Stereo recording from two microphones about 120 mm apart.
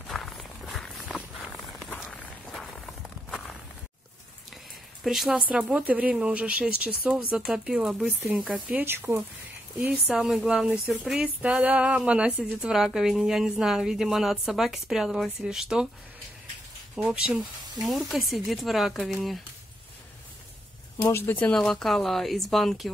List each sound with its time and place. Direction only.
0.0 s walk: centre (ahead or behind)
5.0 s speech: centre (ahead or behind)
16.9 s speech: 5° right (ahead or behind)
21.0 s speech: 20° left (ahead or behind); by 22.8 s centre (ahead or behind)